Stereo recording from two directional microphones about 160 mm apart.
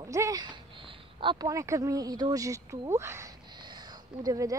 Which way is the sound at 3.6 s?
25° right (ahead or behind).